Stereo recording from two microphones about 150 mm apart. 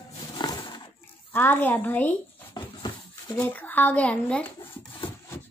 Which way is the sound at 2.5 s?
30° left (ahead or behind).